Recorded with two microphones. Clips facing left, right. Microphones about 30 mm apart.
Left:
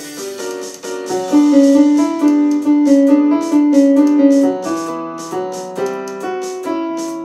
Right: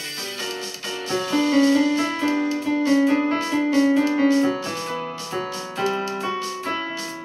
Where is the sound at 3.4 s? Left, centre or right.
Right.